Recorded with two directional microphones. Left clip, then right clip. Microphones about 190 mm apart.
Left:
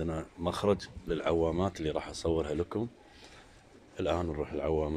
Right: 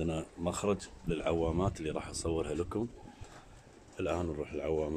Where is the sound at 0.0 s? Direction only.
15° right (ahead or behind).